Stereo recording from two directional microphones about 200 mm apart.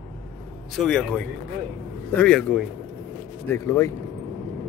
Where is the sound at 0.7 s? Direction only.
5° left (ahead or behind).